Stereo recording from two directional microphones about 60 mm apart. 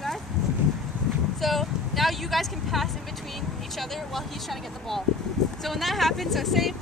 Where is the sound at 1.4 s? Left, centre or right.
Centre.